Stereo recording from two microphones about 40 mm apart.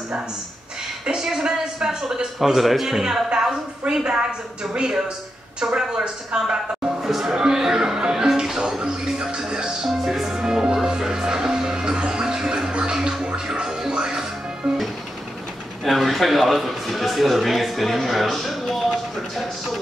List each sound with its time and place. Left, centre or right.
1.0 s speech: centre
3.3 s a woman's voice: centre
5.6 s speech: centre
12.9 s music: centre
15.8 s a man's voice: centre